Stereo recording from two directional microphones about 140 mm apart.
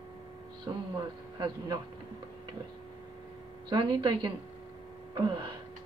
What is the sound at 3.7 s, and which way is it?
Speech, 30° right (ahead or behind).